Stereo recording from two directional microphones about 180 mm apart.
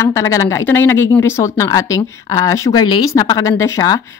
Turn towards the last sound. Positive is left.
turn(degrees=20)  # may be behind; listen again after turning